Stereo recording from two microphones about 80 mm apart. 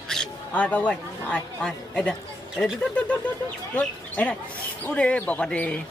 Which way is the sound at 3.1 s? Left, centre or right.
Centre.